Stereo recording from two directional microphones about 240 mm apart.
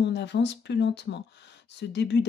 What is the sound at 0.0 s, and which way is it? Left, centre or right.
Speech, left.